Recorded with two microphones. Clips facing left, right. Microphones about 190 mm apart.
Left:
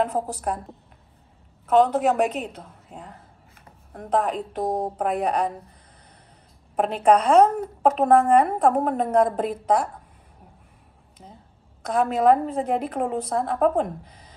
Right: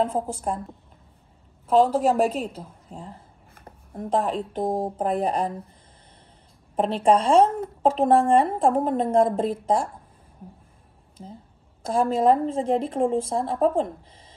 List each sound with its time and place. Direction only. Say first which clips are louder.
0.0 s speech: even; 25° right (ahead or behind)
1.7 s a woman's voice: even; 30° right (ahead or behind)
2.9 s speech: right 1 dB; 5° left (ahead or behind)
3.6 s a sound: right 5 dB; 25° right (ahead or behind)
4.6 s speech: left 1 dB; 25° right (ahead or behind)
6.8 s speech: left 1 dB; 30° right (ahead or behind)
11.8 s speech: even; 30° right (ahead or behind)